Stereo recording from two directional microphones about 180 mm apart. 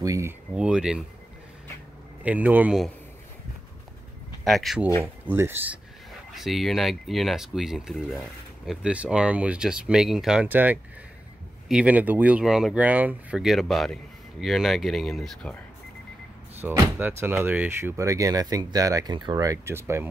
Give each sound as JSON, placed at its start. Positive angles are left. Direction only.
{"t": 0.0, "sound": "speech", "side_deg": -20}
{"t": 0.6, "sound": "speech", "side_deg": -5}
{"t": 2.2, "sound": "speech", "side_deg": -10}
{"t": 4.5, "sound": "speech", "side_deg": 0}
{"t": 5.2, "sound": "speech", "side_deg": -10}
{"t": 6.3, "sound": "speech", "side_deg": 0}
{"t": 16.5, "sound": "speech", "side_deg": -10}